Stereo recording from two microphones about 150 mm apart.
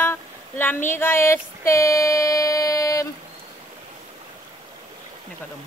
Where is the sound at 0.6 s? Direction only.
15° left (ahead or behind).